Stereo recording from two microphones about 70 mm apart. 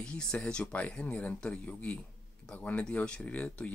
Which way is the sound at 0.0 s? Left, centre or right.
Centre.